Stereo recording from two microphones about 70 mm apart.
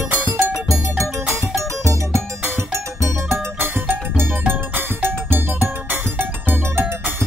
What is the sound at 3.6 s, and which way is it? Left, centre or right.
Music, right.